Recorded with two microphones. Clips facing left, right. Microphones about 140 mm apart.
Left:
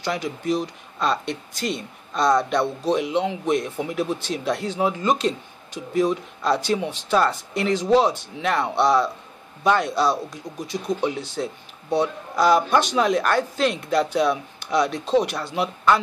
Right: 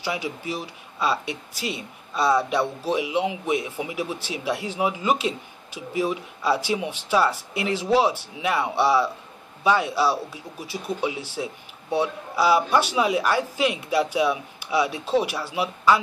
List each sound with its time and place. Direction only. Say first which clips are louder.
0.0 s speech: left 3 dB; 10° right (ahead or behind)